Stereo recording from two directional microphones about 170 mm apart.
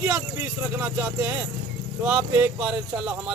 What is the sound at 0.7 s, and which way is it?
Speech, 10° right (ahead or behind).